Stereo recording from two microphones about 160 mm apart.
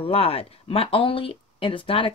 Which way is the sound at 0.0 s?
35° left (ahead or behind).